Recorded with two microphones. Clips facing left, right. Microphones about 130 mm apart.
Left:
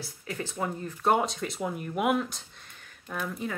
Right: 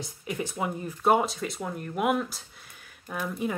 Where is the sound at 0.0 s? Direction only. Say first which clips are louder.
Right 3 dB; 15° right (ahead or behind).